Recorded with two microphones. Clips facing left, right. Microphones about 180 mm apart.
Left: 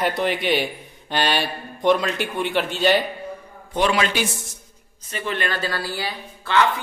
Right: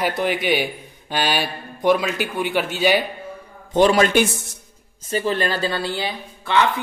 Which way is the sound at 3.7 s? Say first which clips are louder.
Right 6 dB; 35° right (ahead or behind).